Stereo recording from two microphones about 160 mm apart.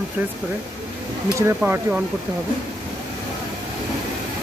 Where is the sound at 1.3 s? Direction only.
15° right (ahead or behind).